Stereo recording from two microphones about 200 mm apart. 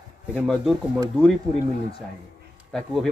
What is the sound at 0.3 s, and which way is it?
Speech, 5° right (ahead or behind).